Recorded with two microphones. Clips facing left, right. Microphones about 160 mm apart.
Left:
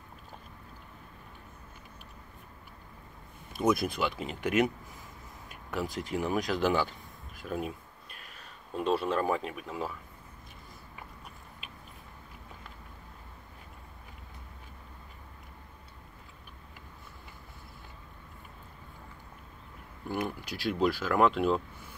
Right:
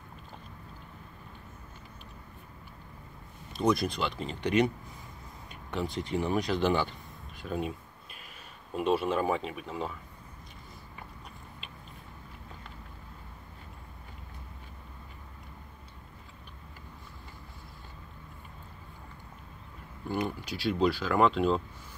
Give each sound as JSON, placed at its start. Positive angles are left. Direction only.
{"t": 3.6, "sound": "speech", "side_deg": 5}
{"t": 5.5, "sound": "vehicle", "side_deg": 5}
{"t": 8.7, "sound": "speech", "side_deg": -5}
{"t": 11.6, "sound": "a sound", "side_deg": 5}
{"t": 20.1, "sound": "speech", "side_deg": 5}